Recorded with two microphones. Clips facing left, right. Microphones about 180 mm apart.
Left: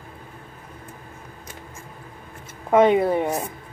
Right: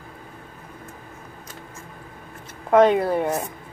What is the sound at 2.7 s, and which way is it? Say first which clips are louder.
Speech: even; 10° left (ahead or behind).